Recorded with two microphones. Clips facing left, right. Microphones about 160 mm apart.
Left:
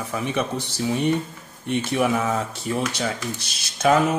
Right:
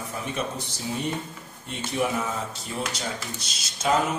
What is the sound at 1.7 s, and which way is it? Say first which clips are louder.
Speech: left 5 dB; 70° left (ahead or behind).